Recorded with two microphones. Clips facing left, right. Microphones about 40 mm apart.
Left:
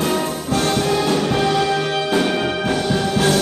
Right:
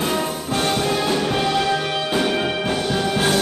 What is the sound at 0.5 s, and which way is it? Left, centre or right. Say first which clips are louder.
Music: left 2 dB; centre.